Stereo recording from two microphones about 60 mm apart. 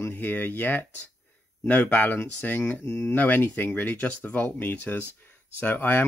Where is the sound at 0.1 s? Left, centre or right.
Left.